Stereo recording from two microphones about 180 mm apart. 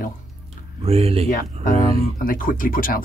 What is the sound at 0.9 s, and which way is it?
Speech, 35° right (ahead or behind).